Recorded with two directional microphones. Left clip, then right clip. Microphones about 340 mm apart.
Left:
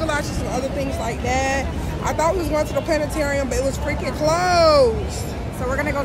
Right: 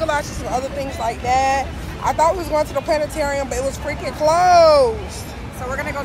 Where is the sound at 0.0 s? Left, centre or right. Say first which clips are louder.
Right 2 dB; centre.